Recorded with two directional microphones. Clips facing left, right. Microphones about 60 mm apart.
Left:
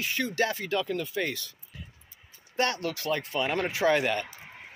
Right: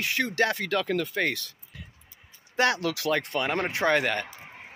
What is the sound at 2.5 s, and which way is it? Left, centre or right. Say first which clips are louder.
Speech: right 4 dB; right.